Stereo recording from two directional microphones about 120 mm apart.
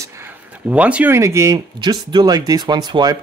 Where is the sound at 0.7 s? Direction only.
10° right (ahead or behind).